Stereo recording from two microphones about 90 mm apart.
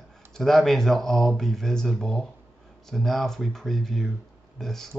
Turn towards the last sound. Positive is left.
turn(degrees=5)  # may be behind; listen again after turning